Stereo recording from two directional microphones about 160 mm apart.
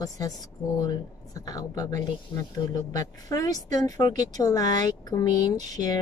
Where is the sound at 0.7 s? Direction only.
25° left (ahead or behind).